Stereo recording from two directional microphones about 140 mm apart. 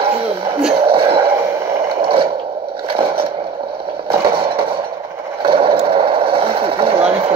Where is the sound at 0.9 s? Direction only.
40° right (ahead or behind).